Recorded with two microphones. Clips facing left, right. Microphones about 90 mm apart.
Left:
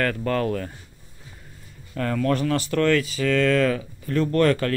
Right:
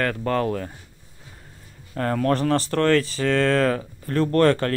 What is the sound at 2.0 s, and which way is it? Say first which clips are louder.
Speech: right 1 dB; 40° right (ahead or behind).